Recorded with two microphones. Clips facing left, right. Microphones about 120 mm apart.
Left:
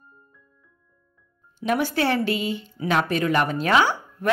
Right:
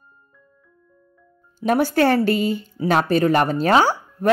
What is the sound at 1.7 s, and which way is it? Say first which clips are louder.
Speech: right 5 dB; 40° right (ahead or behind).